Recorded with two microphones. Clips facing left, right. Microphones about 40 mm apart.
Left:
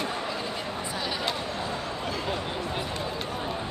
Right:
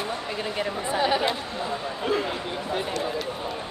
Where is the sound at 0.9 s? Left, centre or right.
Right.